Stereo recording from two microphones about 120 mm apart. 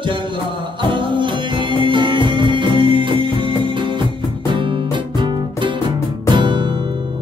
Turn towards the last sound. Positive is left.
turn(degrees=-45)  # may be behind; listen again after turning